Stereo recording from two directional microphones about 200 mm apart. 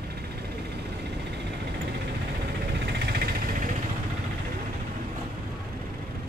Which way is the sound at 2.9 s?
55° right (ahead or behind).